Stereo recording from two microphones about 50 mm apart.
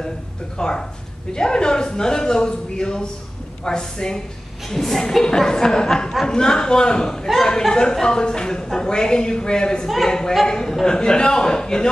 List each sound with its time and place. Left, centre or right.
0.6 s a man's voice: centre